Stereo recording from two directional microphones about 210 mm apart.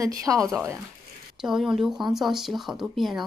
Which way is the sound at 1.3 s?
Centre (ahead or behind).